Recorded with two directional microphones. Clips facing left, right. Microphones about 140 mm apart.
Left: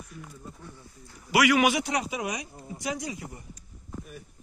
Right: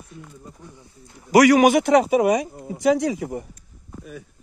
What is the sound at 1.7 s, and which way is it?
Speech, 55° right (ahead or behind).